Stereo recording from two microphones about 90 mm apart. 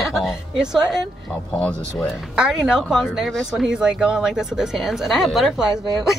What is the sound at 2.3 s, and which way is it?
Speech, 5° right (ahead or behind).